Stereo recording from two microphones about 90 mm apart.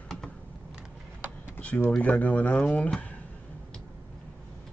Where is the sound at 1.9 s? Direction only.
15° left (ahead or behind).